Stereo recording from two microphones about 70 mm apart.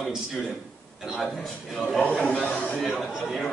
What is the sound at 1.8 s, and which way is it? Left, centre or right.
A man's voice, left.